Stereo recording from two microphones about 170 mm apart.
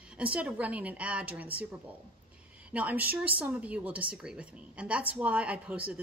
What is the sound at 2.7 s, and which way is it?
A woman's voice, 10° right (ahead or behind).